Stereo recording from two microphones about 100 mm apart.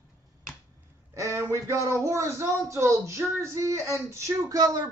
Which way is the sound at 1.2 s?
30° right (ahead or behind).